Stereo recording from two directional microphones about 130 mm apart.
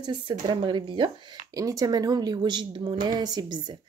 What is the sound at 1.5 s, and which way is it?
Speech, 25° right (ahead or behind).